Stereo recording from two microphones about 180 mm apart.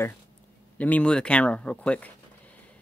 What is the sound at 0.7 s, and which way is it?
Speech, 10° left (ahead or behind).